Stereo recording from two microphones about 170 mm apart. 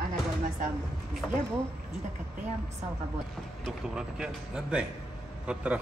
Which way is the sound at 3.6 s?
5° right (ahead or behind).